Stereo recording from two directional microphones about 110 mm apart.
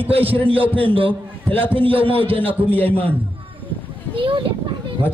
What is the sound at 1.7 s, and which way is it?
Speech, 55° right (ahead or behind).